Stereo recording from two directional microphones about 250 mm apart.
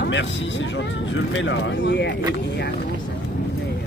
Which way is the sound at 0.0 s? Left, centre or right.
Left.